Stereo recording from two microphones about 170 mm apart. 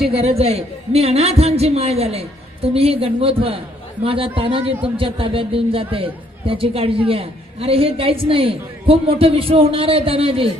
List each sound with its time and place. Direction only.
0.1 s a man's voice: 35° right (ahead or behind)